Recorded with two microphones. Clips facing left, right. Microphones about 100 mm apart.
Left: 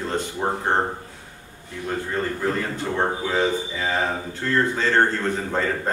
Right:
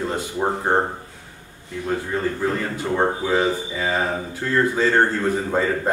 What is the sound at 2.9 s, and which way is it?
A man's voice, 10° right (ahead or behind).